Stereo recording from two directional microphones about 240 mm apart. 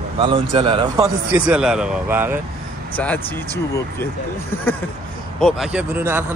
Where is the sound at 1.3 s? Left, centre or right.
Centre.